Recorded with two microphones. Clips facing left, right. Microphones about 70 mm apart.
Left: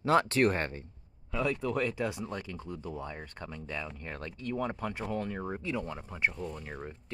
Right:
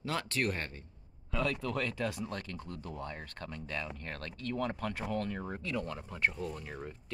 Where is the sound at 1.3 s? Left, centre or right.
Centre.